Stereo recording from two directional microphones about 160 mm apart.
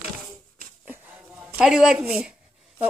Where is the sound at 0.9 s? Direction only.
10° right (ahead or behind).